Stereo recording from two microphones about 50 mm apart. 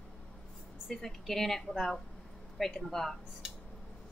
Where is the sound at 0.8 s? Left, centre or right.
Centre.